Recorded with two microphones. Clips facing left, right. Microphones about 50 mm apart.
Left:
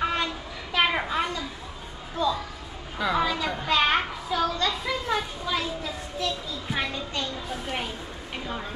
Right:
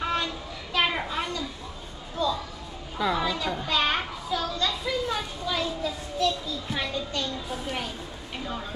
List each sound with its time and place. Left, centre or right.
0.0 s child singing: centre
0.7 s a sound: centre
3.0 s a child's voice: left
3.3 s children playing: centre
6.2 s a child's voice: centre